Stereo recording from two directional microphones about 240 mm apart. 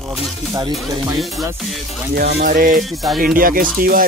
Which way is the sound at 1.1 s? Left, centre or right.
Centre.